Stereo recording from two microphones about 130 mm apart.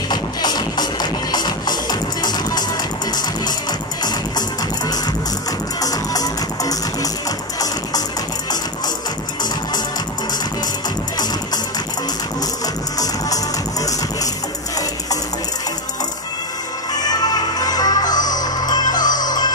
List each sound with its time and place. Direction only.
0.1 s music: 35° left (ahead or behind)
4.0 s music: 30° left (ahead or behind)
13.0 s music: 25° left (ahead or behind)
17.0 s music: 30° left (ahead or behind)